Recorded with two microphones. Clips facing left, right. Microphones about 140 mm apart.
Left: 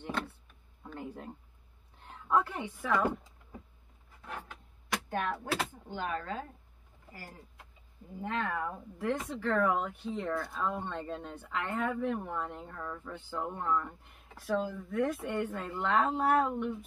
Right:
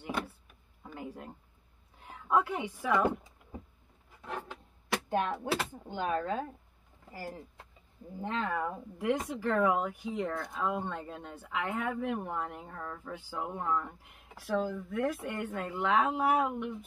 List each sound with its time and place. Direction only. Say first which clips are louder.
0.8 s a sound: left 1 dB; 5° right (ahead or behind)
4.9 s speech: right 3 dB; 20° right (ahead or behind)
8.2 s speech: right 1 dB; 20° right (ahead or behind)
10.3 s speech: left 2 dB; 20° right (ahead or behind)
10.6 s speech: right 1 dB; 5° right (ahead or behind)